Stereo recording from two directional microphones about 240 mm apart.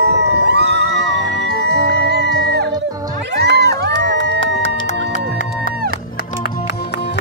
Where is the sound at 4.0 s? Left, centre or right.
Right.